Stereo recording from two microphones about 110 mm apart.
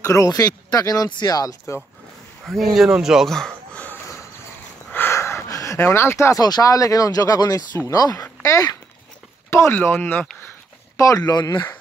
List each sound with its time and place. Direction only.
0.0 s speech: 30° left (ahead or behind)
2.4 s speech: centre (ahead or behind)
4.9 s speech: 20° left (ahead or behind)
11.0 s speech: 30° left (ahead or behind)